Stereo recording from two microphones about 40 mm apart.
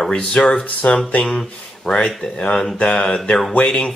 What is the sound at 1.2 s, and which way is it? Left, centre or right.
Speech, centre.